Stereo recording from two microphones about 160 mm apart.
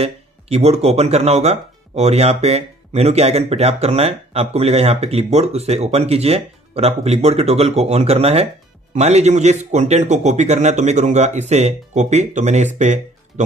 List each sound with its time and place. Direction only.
0.0 s a man's voice: 40° right (ahead or behind)